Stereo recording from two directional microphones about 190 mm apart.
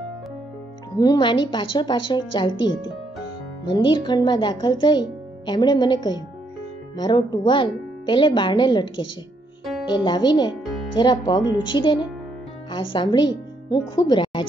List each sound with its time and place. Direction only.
0.9 s speech: 20° left (ahead or behind)